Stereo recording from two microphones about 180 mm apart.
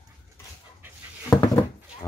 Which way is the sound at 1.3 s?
5° left (ahead or behind).